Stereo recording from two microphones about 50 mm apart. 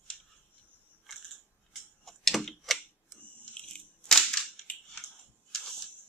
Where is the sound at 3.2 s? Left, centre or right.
Left.